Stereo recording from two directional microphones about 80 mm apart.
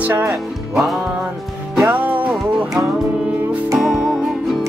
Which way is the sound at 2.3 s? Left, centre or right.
Centre.